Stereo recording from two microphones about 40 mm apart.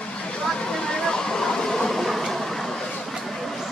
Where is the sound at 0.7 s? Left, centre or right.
Centre.